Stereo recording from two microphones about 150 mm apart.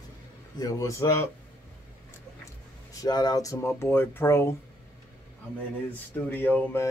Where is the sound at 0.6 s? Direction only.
20° left (ahead or behind).